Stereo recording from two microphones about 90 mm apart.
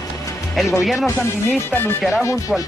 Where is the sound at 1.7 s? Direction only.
20° left (ahead or behind).